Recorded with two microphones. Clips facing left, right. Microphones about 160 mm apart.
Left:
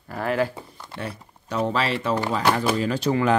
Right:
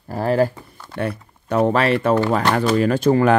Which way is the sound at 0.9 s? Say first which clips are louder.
Right 9 dB; 55° right (ahead or behind).